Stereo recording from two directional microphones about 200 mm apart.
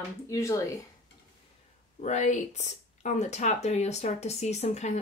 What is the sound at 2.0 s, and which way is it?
Speech, 35° left (ahead or behind).